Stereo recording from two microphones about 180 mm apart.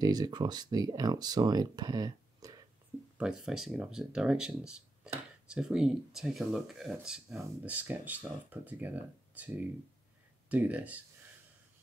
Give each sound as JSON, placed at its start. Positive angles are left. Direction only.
{"t": 0.0, "sound": "speech", "side_deg": -20}
{"t": 3.2, "sound": "speech", "side_deg": -5}
{"t": 10.5, "sound": "speech", "side_deg": -10}